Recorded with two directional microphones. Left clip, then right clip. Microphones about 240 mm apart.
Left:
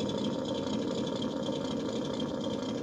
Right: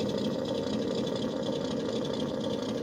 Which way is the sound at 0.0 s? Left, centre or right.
Centre.